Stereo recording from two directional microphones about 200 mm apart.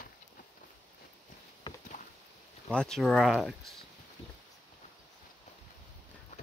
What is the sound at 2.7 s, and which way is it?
Speech, 5° left (ahead or behind).